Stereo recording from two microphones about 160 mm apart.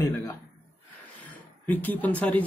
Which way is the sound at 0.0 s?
20° left (ahead or behind).